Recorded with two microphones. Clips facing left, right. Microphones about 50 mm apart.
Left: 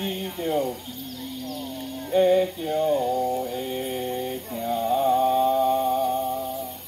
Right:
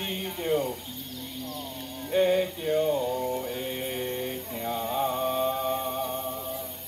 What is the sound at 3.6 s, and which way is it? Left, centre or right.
Mantra, right.